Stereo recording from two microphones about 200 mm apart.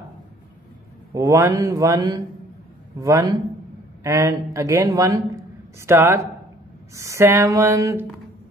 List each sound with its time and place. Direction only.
1.1 s a man's voice: 15° right (ahead or behind)